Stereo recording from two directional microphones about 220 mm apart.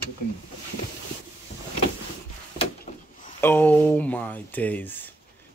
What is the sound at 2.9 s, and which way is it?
Door, 30° left (ahead or behind).